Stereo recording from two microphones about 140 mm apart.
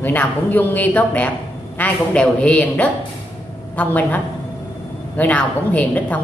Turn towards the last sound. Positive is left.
turn(degrees=10)  # may be behind; listen again after turning